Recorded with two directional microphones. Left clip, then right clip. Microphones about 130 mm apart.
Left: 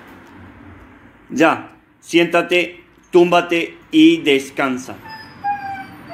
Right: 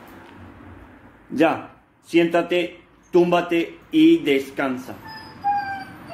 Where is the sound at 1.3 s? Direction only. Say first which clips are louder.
Left 5 dB; 15° left (ahead or behind).